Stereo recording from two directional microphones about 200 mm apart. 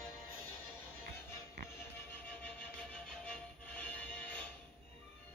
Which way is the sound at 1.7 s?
10° left (ahead or behind).